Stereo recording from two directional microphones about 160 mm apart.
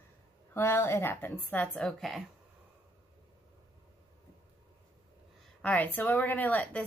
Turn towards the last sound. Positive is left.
turn(degrees=10)  # may be behind; listen again after turning